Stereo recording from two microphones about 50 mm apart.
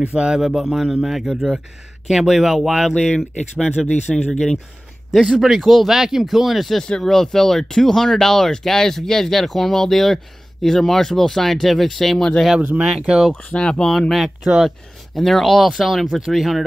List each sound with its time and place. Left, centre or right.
0.2 s speech: centre
5.4 s speech: centre
6.8 s speech: centre
12.5 s speech: right
12.9 s speech: centre
13.3 s speech: left
14.1 s speech: centre
15.1 s speech: centre